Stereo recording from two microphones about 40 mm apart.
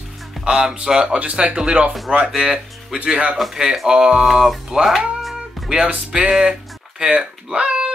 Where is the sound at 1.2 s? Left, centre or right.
Right.